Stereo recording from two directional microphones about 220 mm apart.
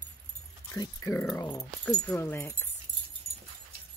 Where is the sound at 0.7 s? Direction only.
15° left (ahead or behind).